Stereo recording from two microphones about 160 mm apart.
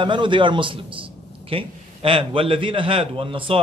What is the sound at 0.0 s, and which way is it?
A man's voice, 30° right (ahead or behind).